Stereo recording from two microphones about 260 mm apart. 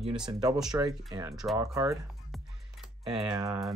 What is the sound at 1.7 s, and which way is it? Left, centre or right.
Speech, centre.